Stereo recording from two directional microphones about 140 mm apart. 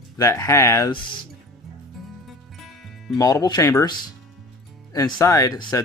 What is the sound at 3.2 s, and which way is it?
Speech, 25° left (ahead or behind).